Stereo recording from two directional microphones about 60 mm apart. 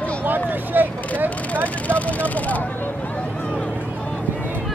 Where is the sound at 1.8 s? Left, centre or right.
Left.